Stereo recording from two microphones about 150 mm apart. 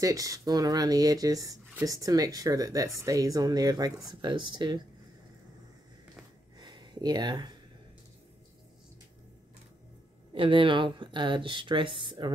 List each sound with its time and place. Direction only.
0.0 s speech: 20° right (ahead or behind)
6.6 s a sound: 30° right (ahead or behind)
10.3 s speech: 35° right (ahead or behind)